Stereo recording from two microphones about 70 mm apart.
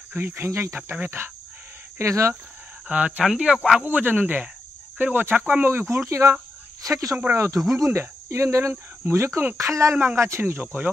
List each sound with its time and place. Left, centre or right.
0.1 s cricket: right
0.9 s speech: right
2.0 s speech: right
2.9 s speech: centre
3.8 s speech: right
5.5 s cricket: right
6.0 s speech: right
7.3 s cricket: right
9.6 s speech: right
9.9 s cricket: right